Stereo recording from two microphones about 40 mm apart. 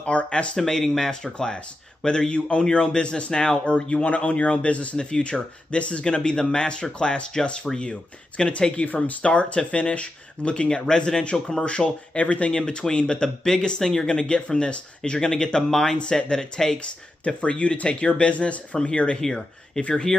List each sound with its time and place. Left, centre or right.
0.0 s speech: left
0.6 s a man's voice: centre; by 4.8 s left
4.9 s speech: left
8.8 s speech: left; by 16.0 s centre
16.0 s speech: left
17.4 s speech: left
18.3 s a man's voice: left
19.2 s speech: centre